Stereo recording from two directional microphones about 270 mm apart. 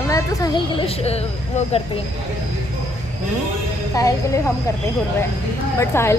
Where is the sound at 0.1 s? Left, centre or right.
Centre.